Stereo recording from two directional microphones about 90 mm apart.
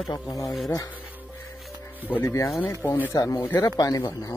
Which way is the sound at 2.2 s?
35° left (ahead or behind).